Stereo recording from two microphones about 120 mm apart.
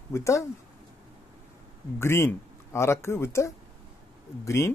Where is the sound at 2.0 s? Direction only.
20° left (ahead or behind).